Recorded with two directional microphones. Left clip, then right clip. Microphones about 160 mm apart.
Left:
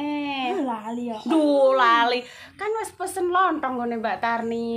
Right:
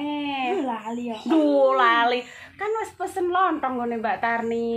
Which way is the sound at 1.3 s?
Centre (ahead or behind).